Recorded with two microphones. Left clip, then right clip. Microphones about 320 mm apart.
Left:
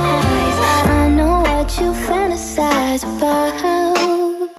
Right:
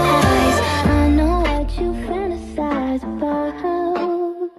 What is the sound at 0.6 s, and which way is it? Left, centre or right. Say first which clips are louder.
Music: left 4 dB; centre.